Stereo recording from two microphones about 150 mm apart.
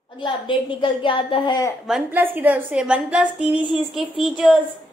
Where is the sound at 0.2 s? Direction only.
35° left (ahead or behind).